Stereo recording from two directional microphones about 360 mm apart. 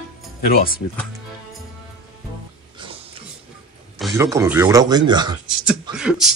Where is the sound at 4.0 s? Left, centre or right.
Centre.